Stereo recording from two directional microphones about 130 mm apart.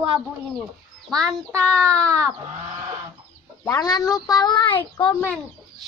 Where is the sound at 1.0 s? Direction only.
5° left (ahead or behind).